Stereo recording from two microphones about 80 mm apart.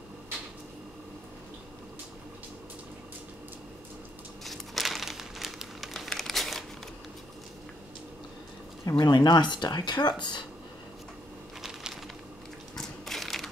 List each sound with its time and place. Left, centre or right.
4.5 s crumpling: centre
8.9 s speech: left
11.6 s a sound: centre
12.7 s crushing: centre